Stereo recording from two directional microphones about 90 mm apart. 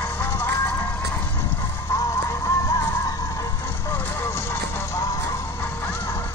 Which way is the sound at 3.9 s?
25° left (ahead or behind).